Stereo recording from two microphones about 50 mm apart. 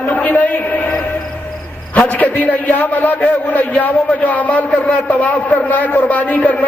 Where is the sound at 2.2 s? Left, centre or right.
Left.